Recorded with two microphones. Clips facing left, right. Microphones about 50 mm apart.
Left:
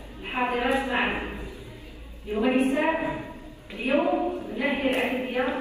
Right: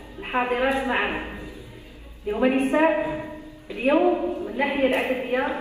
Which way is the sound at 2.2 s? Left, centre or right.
Right.